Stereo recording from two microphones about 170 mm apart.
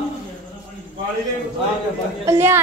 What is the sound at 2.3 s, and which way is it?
Speech, 15° right (ahead or behind).